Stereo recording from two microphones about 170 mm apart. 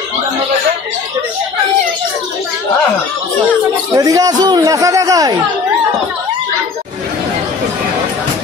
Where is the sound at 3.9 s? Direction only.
20° right (ahead or behind).